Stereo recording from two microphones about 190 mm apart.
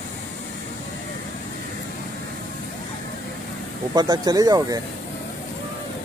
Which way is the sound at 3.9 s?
20° right (ahead or behind).